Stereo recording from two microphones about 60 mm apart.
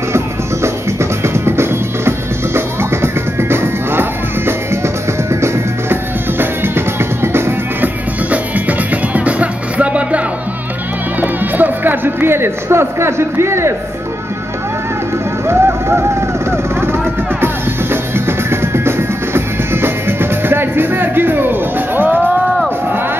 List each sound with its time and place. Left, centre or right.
1.2 s music: right
8.3 s music: right
15.4 s vehicle: right
18.1 s music: right